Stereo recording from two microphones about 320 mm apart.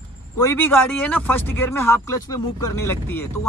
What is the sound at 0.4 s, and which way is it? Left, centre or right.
Speech, centre.